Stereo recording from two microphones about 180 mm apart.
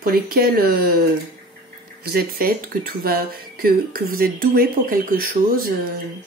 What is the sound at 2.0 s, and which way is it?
Speech, 60° right (ahead or behind).